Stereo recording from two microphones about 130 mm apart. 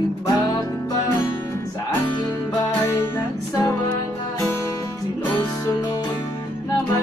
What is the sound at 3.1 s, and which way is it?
Music, 25° left (ahead or behind).